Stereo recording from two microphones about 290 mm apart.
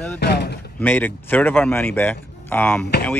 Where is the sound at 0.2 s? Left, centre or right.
Left.